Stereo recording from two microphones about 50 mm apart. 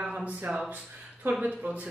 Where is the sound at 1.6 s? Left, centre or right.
Right.